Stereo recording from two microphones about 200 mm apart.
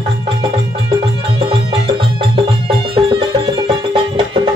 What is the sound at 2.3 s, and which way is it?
Music, 25° right (ahead or behind).